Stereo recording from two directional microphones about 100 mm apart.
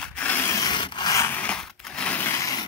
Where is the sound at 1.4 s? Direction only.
10° left (ahead or behind).